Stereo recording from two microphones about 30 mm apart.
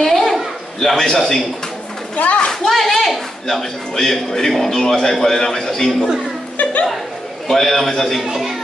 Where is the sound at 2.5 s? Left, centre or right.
Centre.